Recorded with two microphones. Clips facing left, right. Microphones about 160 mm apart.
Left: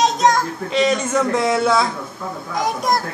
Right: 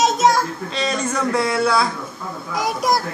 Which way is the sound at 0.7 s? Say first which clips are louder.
Left 6 dB; 20° left (ahead or behind).